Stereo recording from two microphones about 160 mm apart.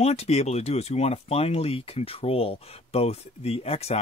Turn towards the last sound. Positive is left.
turn(degrees=40)  # may be behind; listen again after turning